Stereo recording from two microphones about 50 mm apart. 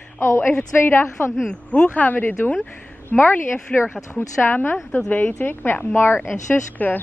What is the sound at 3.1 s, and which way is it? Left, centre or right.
Speech, left.